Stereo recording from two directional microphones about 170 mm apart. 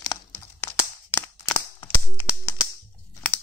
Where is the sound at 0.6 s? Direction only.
15° left (ahead or behind).